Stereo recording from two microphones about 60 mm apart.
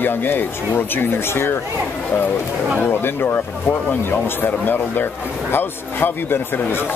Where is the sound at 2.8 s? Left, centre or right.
Left.